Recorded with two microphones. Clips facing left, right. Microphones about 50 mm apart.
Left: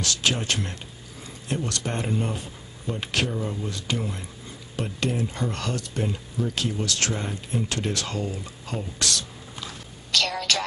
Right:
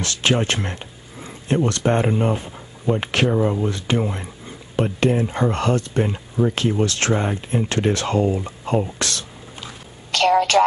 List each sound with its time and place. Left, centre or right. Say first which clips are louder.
0.0 s speech: right 6 dB; right